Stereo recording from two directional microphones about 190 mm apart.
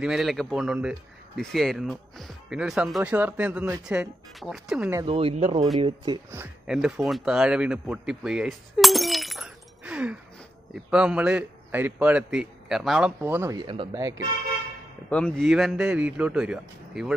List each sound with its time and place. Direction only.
0.0 s speech: centre (ahead or behind)
5.0 s a man's voice: 30° right (ahead or behind)
6.3 s a man's voice: 5° right (ahead or behind)
15.0 s speech: 5° left (ahead or behind)